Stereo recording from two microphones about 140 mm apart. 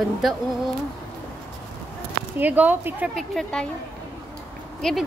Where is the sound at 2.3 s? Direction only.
10° right (ahead or behind).